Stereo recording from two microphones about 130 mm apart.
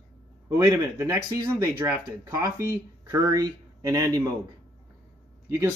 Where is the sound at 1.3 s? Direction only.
20° right (ahead or behind).